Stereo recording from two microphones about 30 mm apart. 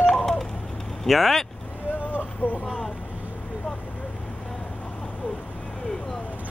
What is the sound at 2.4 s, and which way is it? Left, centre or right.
Vehicle, left.